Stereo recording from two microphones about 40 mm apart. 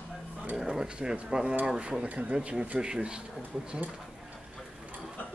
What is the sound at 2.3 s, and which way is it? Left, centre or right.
Speech, right.